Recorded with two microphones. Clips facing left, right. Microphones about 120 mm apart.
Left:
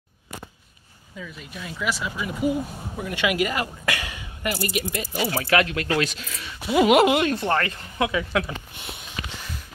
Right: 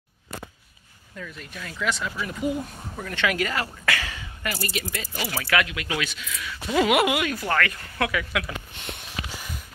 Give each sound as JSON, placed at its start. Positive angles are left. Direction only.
{"t": 1.1, "sound": "speech", "side_deg": 5}
{"t": 5.7, "sound": "speech", "side_deg": 40}
{"t": 6.7, "sound": "speech", "side_deg": 20}